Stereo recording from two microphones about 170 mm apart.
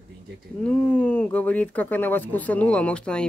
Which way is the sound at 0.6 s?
5° left (ahead or behind).